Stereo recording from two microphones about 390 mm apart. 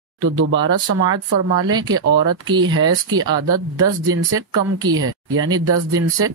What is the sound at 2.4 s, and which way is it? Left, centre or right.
Speech, centre.